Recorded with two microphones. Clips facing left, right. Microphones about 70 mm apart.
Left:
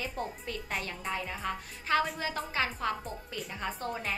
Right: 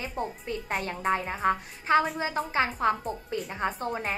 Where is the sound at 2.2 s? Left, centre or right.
Right.